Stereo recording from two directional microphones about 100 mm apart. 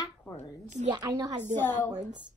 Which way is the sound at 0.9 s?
40° right (ahead or behind).